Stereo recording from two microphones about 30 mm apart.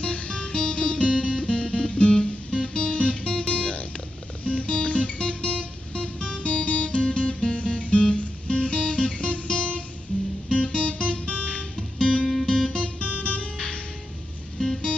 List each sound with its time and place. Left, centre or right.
0.0 s guitar: left
4.5 s music: left
7.5 s music: left
8.5 s guitar: left
13.2 s music: left